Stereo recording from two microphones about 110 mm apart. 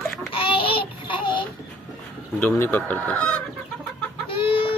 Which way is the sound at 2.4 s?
15° left (ahead or behind).